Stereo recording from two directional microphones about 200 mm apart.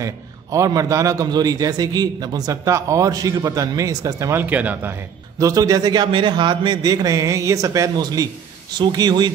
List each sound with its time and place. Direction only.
0.0 s a man's voice: 15° right (ahead or behind)